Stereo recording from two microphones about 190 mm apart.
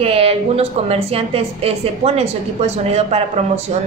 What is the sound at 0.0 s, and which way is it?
A woman's voice, 30° right (ahead or behind).